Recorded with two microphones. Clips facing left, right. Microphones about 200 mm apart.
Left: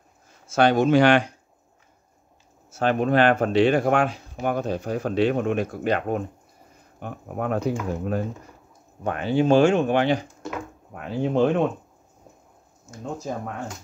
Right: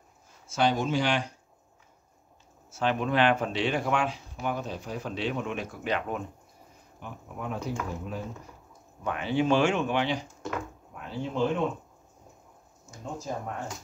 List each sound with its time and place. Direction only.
0.5 s speech: 65° left (ahead or behind)
2.7 s speech: 45° left (ahead or behind)
7.0 s speech: 60° left (ahead or behind)
9.0 s speech: 40° left (ahead or behind); by 11.7 s 65° left (ahead or behind)